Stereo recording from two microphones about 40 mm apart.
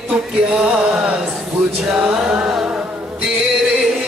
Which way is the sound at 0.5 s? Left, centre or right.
Right.